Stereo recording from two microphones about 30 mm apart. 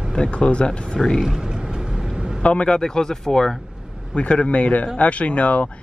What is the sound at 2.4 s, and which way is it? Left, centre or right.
Speech, left.